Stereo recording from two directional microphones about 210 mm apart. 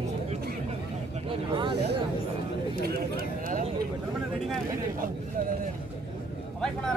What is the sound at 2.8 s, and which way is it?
Speech, 45° right (ahead or behind).